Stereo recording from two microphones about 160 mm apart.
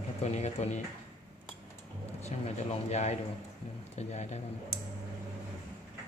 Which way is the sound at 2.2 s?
45° left (ahead or behind).